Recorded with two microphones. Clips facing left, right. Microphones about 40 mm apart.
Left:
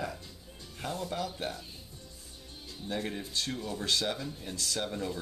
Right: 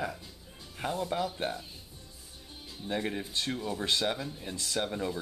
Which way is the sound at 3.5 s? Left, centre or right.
Centre.